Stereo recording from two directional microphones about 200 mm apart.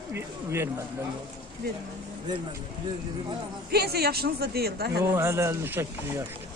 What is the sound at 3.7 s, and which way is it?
Speech, 50° right (ahead or behind).